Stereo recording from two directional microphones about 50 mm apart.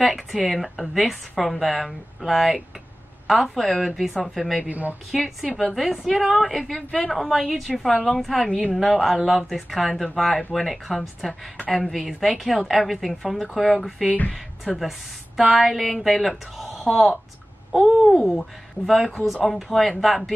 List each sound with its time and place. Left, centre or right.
0.0 s speech: centre
4.6 s a woman's voice: right
5.1 s speech: centre